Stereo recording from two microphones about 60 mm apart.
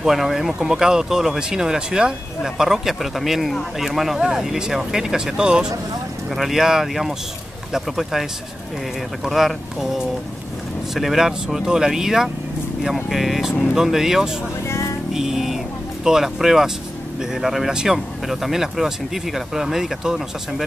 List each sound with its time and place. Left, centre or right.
0.0 s speech: centre
6.3 s speech: centre